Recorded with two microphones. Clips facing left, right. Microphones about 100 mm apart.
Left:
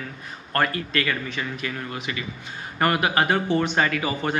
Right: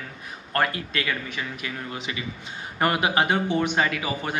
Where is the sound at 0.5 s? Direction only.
10° right (ahead or behind).